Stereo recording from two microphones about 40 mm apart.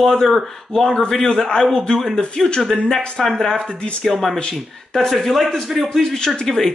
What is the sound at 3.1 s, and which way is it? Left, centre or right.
Speech, centre.